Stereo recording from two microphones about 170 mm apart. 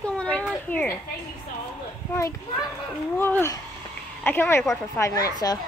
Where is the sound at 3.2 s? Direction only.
15° left (ahead or behind).